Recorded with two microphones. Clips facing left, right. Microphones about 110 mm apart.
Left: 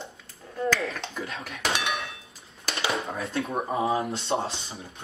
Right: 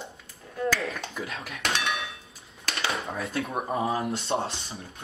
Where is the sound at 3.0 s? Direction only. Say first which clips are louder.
Left 1 dB; centre (ahead or behind).